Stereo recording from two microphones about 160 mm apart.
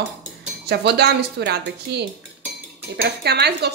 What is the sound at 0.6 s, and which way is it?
A woman's voice, 90° right.